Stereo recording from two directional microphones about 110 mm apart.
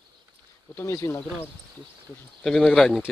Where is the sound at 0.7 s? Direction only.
25° left (ahead or behind).